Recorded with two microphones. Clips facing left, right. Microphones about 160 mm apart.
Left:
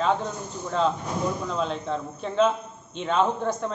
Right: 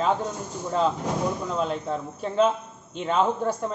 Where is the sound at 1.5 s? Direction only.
5° right (ahead or behind).